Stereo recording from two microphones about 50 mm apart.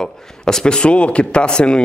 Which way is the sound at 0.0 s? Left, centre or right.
Centre.